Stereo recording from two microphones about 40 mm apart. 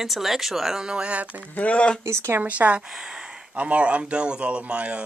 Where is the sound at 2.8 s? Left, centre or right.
Centre.